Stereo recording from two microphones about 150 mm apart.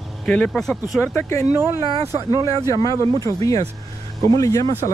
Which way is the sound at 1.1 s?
20° left (ahead or behind).